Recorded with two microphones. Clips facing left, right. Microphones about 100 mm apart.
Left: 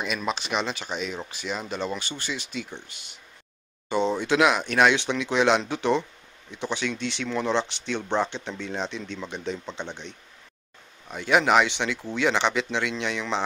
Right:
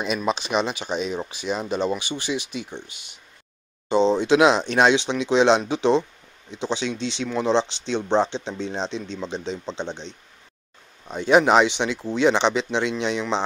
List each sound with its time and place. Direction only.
0.0 s speech: 20° right (ahead or behind)